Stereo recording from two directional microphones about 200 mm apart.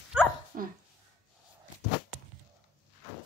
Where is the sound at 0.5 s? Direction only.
40° right (ahead or behind).